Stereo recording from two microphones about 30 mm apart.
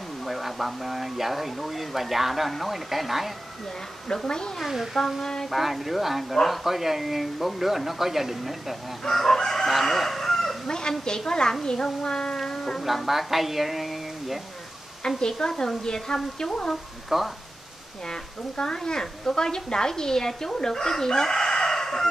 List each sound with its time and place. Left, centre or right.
0.2 s speech: centre
4.3 s a woman's voice: left
4.9 s speech: centre
5.2 s chicken: centre
5.5 s speech: centre
9.0 s chicken: centre
9.4 s crowing: centre
10.7 s a woman's voice: left
12.4 s a sound: left
12.8 s speech: centre
13.3 s a sound: centre
15.0 s a woman's voice: left
17.1 s speech: centre
18.0 s a woman's voice: left